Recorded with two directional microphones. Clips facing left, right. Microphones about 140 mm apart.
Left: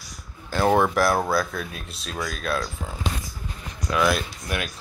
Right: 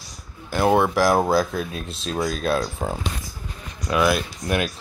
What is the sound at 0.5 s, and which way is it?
Speech, 15° right (ahead or behind).